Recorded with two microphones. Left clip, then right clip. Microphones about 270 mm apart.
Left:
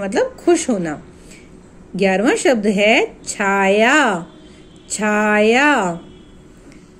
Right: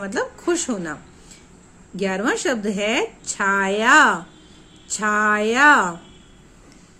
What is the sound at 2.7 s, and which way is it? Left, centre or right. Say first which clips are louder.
Speech: left 9 dB; right.